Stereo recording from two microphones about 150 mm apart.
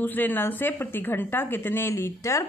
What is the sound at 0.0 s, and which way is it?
A woman's voice, 10° left (ahead or behind).